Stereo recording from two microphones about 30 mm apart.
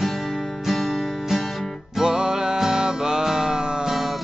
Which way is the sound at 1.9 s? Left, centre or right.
Right.